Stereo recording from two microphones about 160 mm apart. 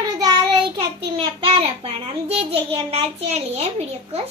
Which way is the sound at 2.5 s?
40° right (ahead or behind).